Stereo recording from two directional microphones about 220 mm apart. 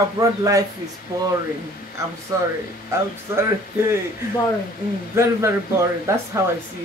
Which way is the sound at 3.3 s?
10° right (ahead or behind).